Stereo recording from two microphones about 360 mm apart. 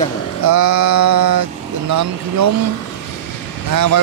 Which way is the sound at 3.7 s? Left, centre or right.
Right.